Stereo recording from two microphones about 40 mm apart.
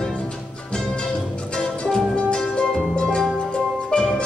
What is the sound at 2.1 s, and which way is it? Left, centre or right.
Music, left.